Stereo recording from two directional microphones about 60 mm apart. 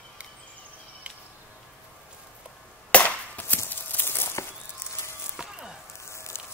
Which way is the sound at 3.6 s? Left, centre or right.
Left.